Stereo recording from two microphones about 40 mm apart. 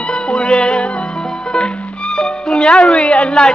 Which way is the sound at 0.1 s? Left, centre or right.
Left.